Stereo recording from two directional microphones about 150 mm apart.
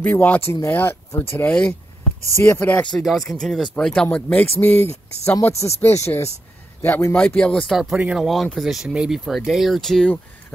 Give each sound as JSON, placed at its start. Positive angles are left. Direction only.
{"t": 0.0, "sound": "speech", "side_deg": 10}
{"t": 2.2, "sound": "speech", "side_deg": 20}
{"t": 5.2, "sound": "speech", "side_deg": 20}